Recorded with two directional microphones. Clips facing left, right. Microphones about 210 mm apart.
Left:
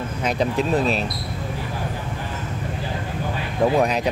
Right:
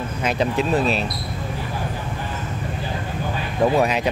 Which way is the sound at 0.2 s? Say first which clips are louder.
Even; centre (ahead or behind).